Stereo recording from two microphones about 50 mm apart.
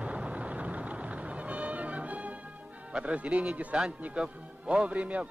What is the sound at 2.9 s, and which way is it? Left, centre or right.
A man's voice, right.